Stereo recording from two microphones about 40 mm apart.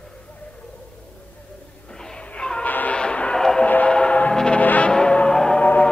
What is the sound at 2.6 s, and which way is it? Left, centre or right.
Music, left.